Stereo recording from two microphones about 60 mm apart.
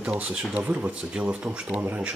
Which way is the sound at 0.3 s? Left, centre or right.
Centre.